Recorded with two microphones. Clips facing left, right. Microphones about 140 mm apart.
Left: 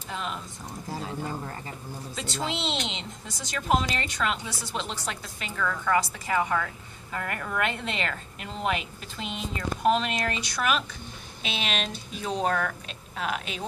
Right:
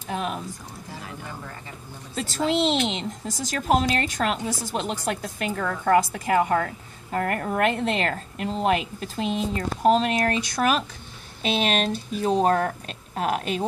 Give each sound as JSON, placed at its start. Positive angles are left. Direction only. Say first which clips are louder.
{"t": 0.1, "sound": "a woman's voice", "louder": "right 6 dB", "side_deg": -50}
{"t": 2.1, "sound": "a woman's voice", "louder": "right 9 dB", "side_deg": -45}